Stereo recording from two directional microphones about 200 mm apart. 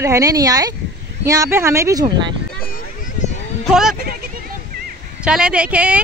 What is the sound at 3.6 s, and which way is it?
Speech, centre (ahead or behind).